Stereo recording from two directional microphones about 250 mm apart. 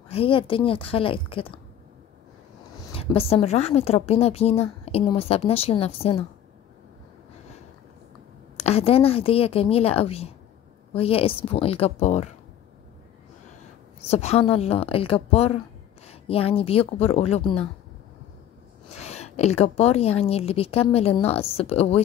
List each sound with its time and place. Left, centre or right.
0.1 s a woman's voice: left
2.9 s a woman's voice: left
8.5 s a woman's voice: left
14.0 s a woman's voice: left
18.9 s a woman's voice: left